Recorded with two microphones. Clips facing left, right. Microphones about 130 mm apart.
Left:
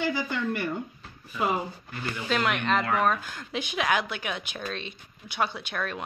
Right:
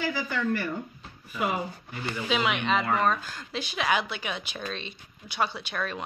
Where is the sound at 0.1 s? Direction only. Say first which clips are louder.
Even; 20° left (ahead or behind).